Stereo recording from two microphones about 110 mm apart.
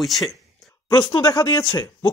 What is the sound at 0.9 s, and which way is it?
Speech, 45° left (ahead or behind).